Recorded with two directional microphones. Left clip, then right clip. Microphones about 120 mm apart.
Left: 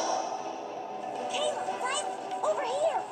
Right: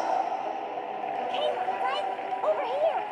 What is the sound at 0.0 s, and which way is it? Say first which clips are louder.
Music: right 3 dB; 25° right (ahead or behind).